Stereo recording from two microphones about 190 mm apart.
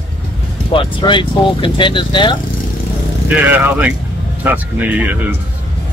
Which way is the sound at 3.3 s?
10° right (ahead or behind).